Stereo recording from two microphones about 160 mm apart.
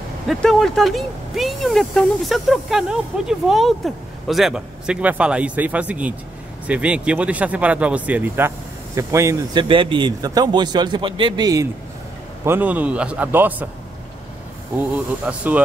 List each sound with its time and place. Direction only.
0.3 s speech: centre (ahead or behind); by 11.6 s 25° right (ahead or behind)
12.4 s a man's voice: 10° right (ahead or behind)
14.8 s a man's voice: 10° right (ahead or behind)